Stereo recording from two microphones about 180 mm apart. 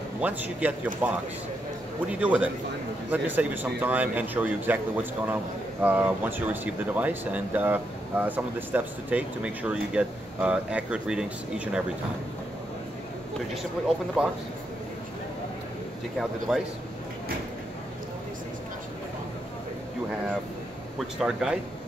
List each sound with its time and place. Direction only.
0.2 s a man's voice: 10° right (ahead or behind)
13.8 s speech: centre (ahead or behind)
16.2 s speech: centre (ahead or behind)
21.2 s speech: 5° right (ahead or behind)